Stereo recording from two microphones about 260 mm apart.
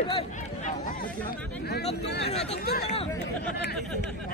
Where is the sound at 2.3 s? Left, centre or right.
Left.